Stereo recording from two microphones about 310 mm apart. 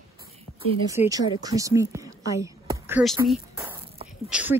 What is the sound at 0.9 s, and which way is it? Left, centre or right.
A woman's voice, centre.